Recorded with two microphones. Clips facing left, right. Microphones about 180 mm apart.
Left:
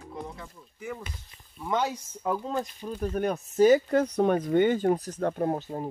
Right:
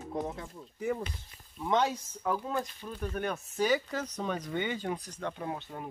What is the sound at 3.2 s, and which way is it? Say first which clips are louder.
Speech: left 9 dB; 40° left (ahead or behind).